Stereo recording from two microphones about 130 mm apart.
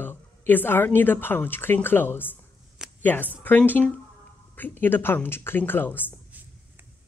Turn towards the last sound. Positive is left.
turn(degrees=15)  # may be behind; listen again after turning